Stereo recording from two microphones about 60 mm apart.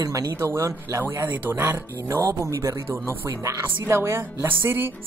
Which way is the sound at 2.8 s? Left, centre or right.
Right.